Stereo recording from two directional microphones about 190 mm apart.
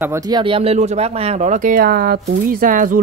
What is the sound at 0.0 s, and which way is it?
Speech, 15° right (ahead or behind).